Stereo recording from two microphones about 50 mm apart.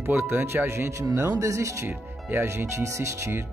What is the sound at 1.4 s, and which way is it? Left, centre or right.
Speech, right.